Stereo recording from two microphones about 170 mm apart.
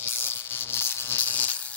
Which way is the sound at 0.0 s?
15° left (ahead or behind).